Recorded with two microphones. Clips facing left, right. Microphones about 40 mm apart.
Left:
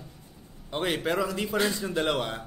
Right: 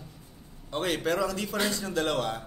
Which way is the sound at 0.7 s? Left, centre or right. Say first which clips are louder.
Even; centre.